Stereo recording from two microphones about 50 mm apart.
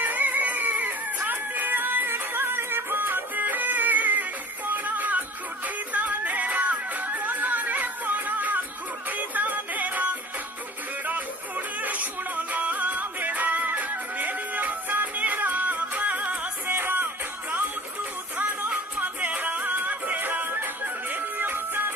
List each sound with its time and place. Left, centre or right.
0.0 s music: right
18.4 s music: right